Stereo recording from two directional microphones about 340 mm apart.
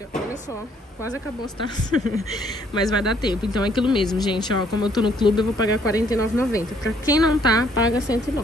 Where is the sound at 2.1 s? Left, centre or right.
Centre.